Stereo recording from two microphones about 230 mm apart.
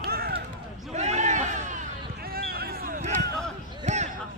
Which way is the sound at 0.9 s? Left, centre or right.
Right.